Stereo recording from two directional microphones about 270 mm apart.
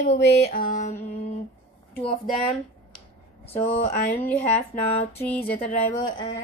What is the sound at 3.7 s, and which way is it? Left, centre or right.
Speech, left.